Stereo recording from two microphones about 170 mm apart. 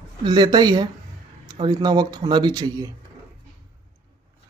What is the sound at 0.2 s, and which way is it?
Speech, 25° right (ahead or behind).